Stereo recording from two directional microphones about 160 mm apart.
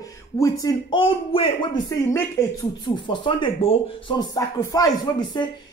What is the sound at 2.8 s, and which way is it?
Speech, 30° left (ahead or behind).